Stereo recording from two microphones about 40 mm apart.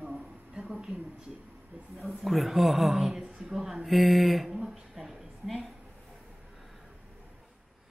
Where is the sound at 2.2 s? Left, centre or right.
Centre.